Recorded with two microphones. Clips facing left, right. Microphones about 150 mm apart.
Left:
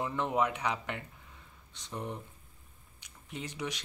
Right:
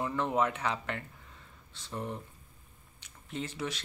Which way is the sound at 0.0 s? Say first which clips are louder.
Right 1 dB; 15° left (ahead or behind).